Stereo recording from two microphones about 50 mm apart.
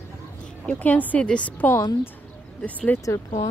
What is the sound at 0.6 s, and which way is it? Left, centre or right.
Music, left.